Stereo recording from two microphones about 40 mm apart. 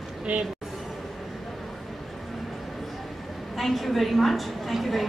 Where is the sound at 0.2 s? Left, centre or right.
Right.